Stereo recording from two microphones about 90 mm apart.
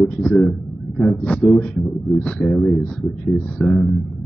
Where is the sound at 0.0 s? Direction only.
10° left (ahead or behind).